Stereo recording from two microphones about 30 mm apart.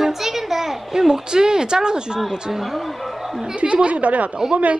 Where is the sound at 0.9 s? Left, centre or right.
Centre.